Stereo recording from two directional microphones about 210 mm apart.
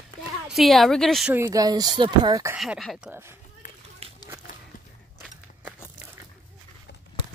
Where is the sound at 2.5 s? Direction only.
5° right (ahead or behind).